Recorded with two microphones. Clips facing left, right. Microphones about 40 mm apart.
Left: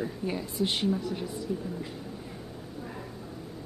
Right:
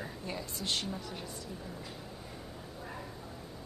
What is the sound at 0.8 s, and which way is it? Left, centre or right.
Speech, centre.